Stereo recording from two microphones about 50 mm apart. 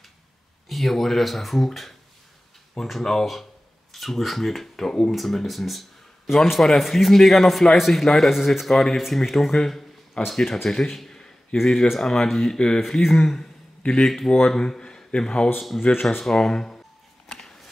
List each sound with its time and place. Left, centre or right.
0.7 s a man's voice: centre
12.8 s a man's voice: centre
15.9 s speech: left
16.2 s speech: centre
17.3 s a sound: centre